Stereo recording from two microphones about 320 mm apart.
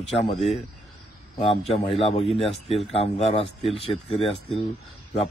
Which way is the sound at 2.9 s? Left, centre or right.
Centre.